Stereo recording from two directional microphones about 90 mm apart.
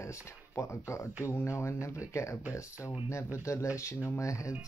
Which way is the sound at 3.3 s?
30° left (ahead or behind).